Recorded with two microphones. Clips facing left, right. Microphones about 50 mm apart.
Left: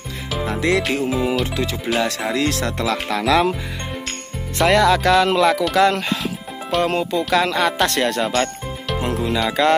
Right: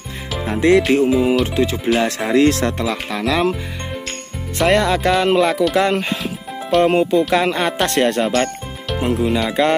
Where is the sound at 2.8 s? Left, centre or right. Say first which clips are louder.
Left 1 dB; centre.